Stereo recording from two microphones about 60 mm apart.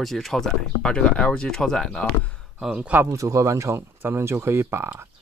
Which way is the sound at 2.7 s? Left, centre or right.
Centre.